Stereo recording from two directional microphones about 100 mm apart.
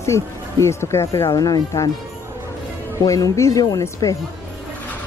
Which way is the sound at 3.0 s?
35° left (ahead or behind).